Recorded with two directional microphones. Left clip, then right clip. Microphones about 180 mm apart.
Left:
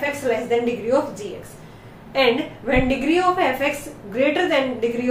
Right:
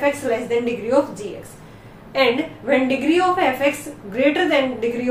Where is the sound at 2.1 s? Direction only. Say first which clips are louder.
Even; 15° right (ahead or behind).